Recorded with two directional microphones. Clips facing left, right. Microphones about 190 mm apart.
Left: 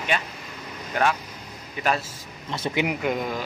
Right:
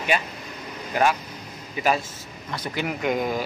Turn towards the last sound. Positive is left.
turn(degrees=-5)  # may be behind; listen again after turning